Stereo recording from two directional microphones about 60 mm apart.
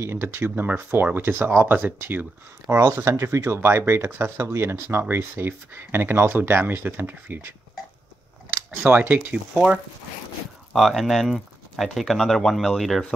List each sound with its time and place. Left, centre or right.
0.0 s speech: right
2.7 s speech: right
8.8 s speech: right
9.3 s speech: centre
10.7 s speech: centre